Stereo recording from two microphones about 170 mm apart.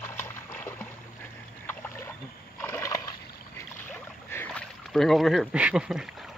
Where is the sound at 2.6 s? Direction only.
15° left (ahead or behind).